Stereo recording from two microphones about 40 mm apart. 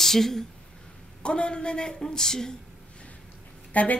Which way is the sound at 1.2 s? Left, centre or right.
Left.